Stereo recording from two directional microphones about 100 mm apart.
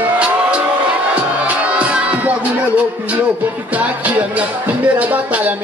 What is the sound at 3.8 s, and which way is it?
Music, 15° right (ahead or behind).